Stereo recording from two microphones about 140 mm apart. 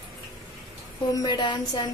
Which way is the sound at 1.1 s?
30° left (ahead or behind).